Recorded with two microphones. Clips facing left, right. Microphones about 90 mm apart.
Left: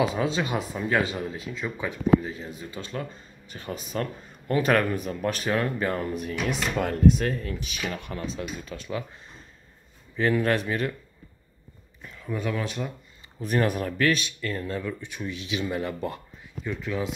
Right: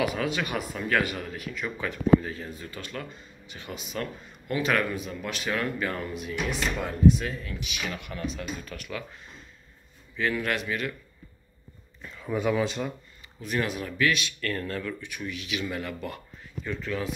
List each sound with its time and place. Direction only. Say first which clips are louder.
0.0 s speech: left 3 dB; 25° left (ahead or behind)
3.4 s speech: left 4 dB; 40° left (ahead or behind)
6.8 s speech: left 1 dB; 60° left (ahead or behind); by 11.0 s 35° left (ahead or behind)
12.0 s speech: right 3 dB; centre (ahead or behind)
13.4 s speech: left 5 dB; 40° left (ahead or behind)
14.2 s speech: even; 20° left (ahead or behind)
16.6 s speech: left 2 dB; 15° left (ahead or behind)